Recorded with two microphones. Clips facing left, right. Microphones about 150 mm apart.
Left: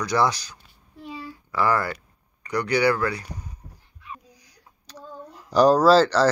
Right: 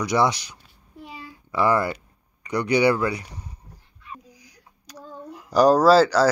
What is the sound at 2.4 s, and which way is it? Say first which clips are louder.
Speech: right 2 dB; 20° right (ahead or behind).